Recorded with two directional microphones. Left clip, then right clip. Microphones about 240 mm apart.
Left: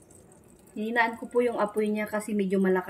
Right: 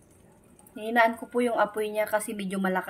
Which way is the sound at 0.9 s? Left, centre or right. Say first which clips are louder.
Right 3 dB; right.